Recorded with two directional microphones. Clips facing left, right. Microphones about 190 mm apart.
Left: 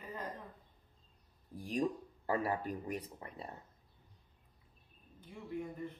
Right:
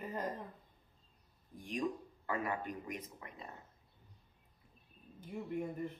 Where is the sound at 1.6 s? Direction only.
35° left (ahead or behind).